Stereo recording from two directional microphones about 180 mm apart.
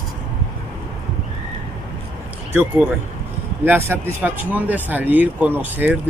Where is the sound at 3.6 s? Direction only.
10° right (ahead or behind).